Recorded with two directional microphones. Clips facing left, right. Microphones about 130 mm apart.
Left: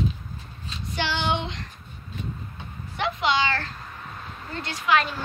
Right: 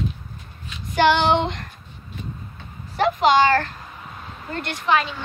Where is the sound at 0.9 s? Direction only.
55° right (ahead or behind).